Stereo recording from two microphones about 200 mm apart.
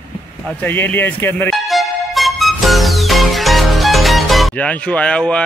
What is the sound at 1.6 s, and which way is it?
Music, centre (ahead or behind).